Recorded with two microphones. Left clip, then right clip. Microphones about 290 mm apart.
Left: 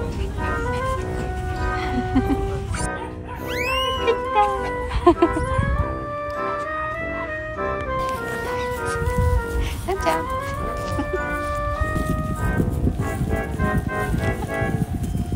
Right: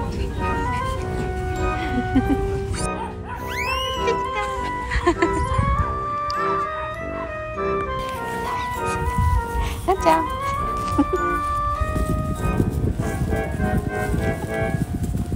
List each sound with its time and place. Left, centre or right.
2.0 s music: centre
3.5 s music: centre
9.8 s music: centre
13.3 s music: centre